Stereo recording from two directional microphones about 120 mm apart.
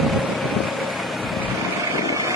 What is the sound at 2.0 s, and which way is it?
Vehicle, 25° right (ahead or behind).